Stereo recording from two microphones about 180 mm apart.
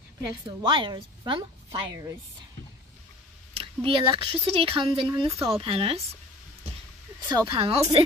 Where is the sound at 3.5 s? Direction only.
30° right (ahead or behind).